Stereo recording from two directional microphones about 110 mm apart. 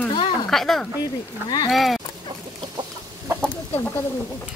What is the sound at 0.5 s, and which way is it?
Speech, 5° left (ahead or behind).